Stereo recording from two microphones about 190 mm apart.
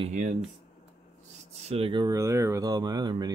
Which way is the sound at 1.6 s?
30° right (ahead or behind).